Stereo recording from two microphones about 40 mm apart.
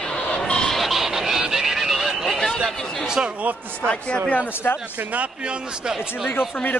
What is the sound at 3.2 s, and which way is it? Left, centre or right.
Speech, right.